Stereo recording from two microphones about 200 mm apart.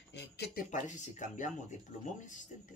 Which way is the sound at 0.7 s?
35° left (ahead or behind).